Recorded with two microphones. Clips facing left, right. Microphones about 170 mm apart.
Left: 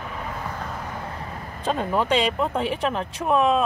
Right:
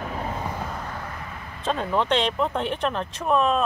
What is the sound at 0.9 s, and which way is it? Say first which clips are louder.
Vehicle: left 2 dB; 25° left (ahead or behind).